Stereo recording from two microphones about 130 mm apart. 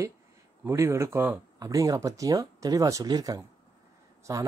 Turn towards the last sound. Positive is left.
turn(degrees=-25)  # may be behind; listen again after turning